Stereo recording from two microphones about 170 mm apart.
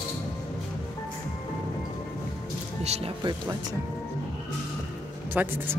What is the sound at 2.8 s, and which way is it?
Music, 40° right (ahead or behind).